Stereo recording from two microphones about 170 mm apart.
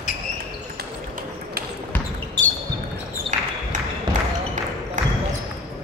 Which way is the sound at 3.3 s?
45° right (ahead or behind).